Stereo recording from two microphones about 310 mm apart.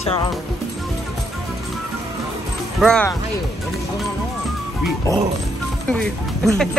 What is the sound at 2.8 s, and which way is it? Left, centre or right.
Speech, centre.